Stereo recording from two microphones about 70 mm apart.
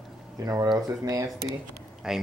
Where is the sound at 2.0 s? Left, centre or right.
Centre.